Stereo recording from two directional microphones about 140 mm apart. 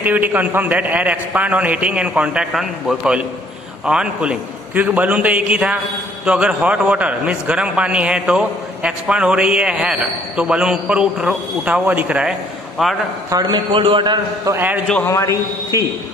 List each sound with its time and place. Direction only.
0.0 s a man's voice: 10° right (ahead or behind)
13.3 s a man's voice: 30° right (ahead or behind)
15.0 s a man's voice: 20° left (ahead or behind)